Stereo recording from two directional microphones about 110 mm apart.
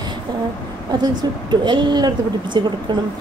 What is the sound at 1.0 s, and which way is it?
Speech, 45° right (ahead or behind).